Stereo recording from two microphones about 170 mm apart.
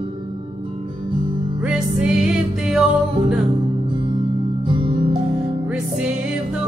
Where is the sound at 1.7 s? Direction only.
5° right (ahead or behind).